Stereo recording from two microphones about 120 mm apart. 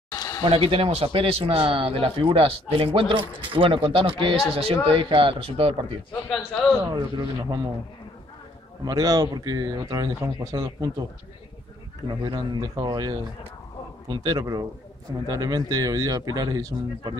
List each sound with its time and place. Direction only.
0.1 s a sound: 35° left (ahead or behind)
0.4 s speech: 50° right (ahead or behind)
6.9 s speech: 30° right (ahead or behind)
8.8 s speech: 30° right (ahead or behind)
12.1 s speech: 35° right (ahead or behind)